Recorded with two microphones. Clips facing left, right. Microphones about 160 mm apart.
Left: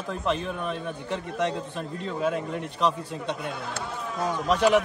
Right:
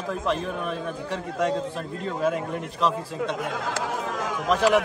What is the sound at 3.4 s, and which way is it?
Chatter, 90° right.